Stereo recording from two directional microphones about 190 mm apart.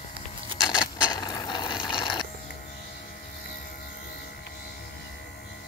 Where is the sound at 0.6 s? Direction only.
20° left (ahead or behind).